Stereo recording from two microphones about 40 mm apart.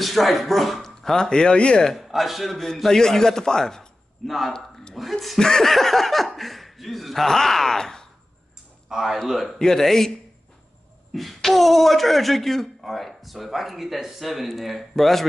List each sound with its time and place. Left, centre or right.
0.0 s speech: centre
1.2 s speech: left
2.0 s speech: centre
2.7 s a man's voice: centre
4.3 s speech: centre
4.6 s a sound: centre
5.4 s speech: centre
8.8 s speech: centre
9.6 s a man's voice: centre
11.1 s speech: centre